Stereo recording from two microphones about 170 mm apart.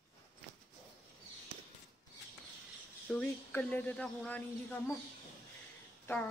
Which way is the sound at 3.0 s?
10° left (ahead or behind).